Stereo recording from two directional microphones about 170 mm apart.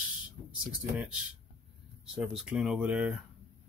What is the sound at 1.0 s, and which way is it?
Speech, 5° right (ahead or behind).